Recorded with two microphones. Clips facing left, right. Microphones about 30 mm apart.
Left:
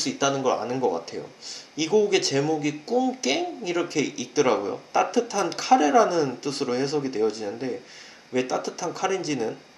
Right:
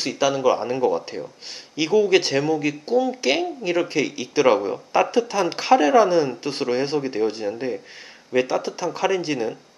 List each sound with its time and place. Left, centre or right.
0.0 s speech: centre